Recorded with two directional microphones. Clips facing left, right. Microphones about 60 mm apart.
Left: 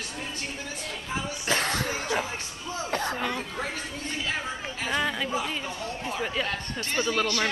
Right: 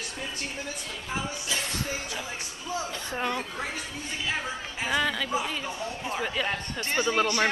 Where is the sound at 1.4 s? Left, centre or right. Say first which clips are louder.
Left 5 dB; left.